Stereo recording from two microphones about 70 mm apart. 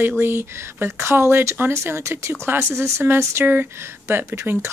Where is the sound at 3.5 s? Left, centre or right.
Right.